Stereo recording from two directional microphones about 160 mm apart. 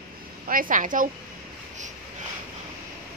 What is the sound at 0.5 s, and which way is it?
Speech, 60° right (ahead or behind).